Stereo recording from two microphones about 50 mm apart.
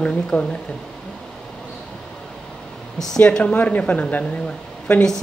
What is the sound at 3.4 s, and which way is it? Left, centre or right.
Speech, left.